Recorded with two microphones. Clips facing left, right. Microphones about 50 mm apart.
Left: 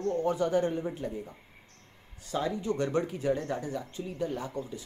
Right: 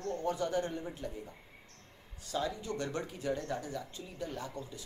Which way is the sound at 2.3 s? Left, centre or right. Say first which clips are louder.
Left 5 dB; left.